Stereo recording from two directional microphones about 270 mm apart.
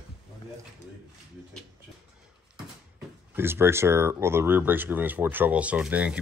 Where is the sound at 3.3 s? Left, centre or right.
Centre.